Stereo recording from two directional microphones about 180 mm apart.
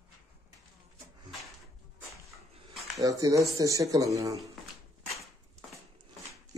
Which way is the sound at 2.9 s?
20° right (ahead or behind).